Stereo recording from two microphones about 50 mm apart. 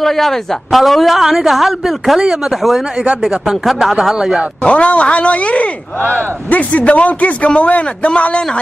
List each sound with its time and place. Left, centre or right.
0.0 s speech: centre
4.6 s a man's voice: left